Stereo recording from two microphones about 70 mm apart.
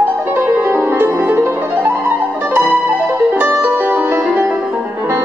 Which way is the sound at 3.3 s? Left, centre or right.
Right.